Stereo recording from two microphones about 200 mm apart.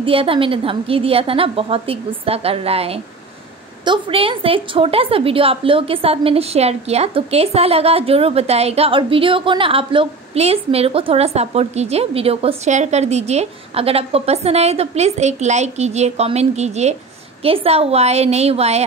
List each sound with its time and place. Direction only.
0.0 s a woman's voice: 25° right (ahead or behind)